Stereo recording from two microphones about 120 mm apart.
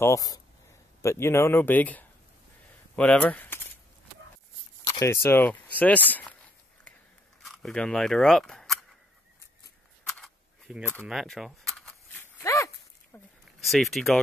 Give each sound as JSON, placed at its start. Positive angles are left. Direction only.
{"t": 0.0, "sound": "speech", "side_deg": 30}
{"t": 4.8, "sound": "speech", "side_deg": 25}
{"t": 7.4, "sound": "speech", "side_deg": 0}
{"t": 10.0, "sound": "a sound", "side_deg": 5}
{"t": 10.7, "sound": "speech", "side_deg": -5}
{"t": 11.9, "sound": "dog", "side_deg": 15}
{"t": 13.5, "sound": "speech", "side_deg": 0}